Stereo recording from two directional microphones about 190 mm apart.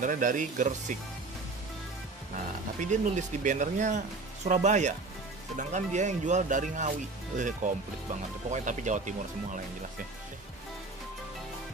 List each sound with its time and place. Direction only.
0.0 s speech: 45° right (ahead or behind)
2.8 s speech: 40° right (ahead or behind)